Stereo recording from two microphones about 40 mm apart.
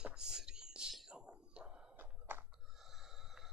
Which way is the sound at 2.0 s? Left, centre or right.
Right.